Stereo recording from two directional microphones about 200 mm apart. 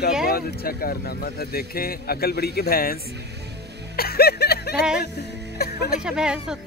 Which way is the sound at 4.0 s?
50° left (ahead or behind).